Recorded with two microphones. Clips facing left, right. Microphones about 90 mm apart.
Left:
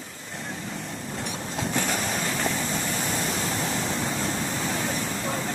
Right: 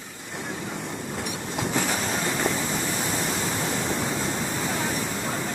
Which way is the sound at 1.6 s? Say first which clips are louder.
Right 1 dB; 5° right (ahead or behind).